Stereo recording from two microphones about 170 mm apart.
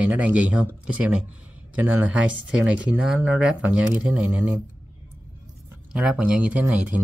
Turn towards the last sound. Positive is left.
turn(degrees=-10)  # may be behind; listen again after turning